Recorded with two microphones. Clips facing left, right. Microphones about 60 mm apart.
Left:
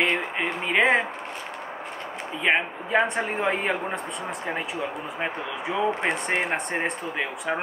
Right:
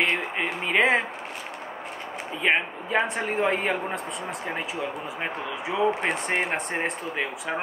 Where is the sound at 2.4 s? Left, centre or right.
Centre.